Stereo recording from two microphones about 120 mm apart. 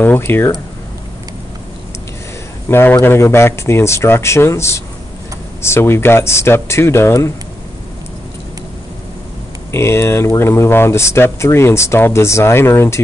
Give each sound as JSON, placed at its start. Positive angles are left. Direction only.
{"t": 0.0, "sound": "speech", "side_deg": 15}
{"t": 2.7, "sound": "speech", "side_deg": 20}
{"t": 9.7, "sound": "speech", "side_deg": 20}